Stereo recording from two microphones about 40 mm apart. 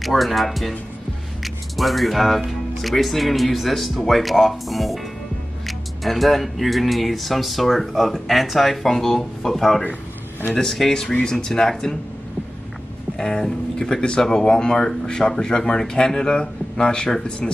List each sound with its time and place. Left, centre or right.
0.0 s speech: centre
10.9 s speech: centre
13.2 s speech: centre